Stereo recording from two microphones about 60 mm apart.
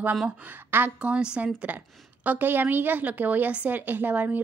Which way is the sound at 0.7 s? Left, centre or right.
Right.